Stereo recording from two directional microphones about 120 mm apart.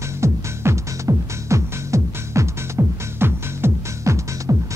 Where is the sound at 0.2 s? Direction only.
25° right (ahead or behind).